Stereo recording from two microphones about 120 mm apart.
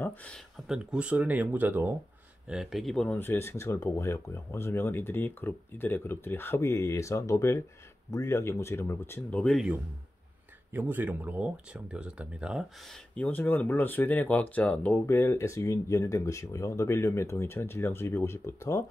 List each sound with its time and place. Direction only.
0.2 s speech: 10° left (ahead or behind)
0.7 s speech: 10° right (ahead or behind)
2.4 s speech: 5° right (ahead or behind)
3.2 s speech: 20° left (ahead or behind)
9.4 s speech: centre (ahead or behind)
10.7 s speech: 15° right (ahead or behind)
13.1 s speech: 10° left (ahead or behind)
15.0 s speech: 20° left (ahead or behind)